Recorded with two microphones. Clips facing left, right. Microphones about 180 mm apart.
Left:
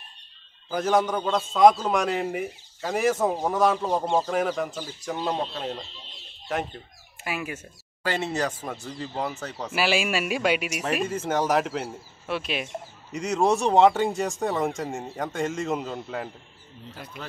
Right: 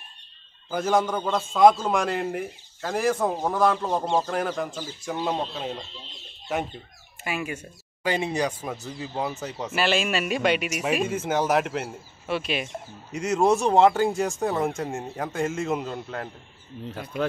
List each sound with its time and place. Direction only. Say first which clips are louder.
0.7 s a man's voice: even; centre (ahead or behind)
7.2 s a man's voice: right 2 dB; 5° left (ahead or behind)
8.0 s a man's voice: right 2 dB; 15° right (ahead or behind)
9.7 s a man's voice: even; 5° left (ahead or behind)
16.9 s speech: right 5 dB; 55° right (ahead or behind)